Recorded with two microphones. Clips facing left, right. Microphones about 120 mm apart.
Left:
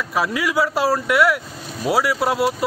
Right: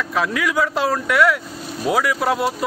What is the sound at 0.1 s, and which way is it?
Speech, 5° left (ahead or behind).